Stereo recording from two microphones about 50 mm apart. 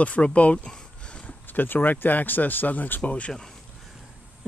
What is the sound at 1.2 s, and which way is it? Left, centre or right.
Speech, left.